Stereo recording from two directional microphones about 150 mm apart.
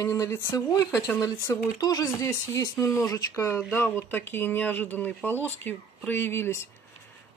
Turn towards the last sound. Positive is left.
turn(degrees=15)  # may be behind; listen again after turning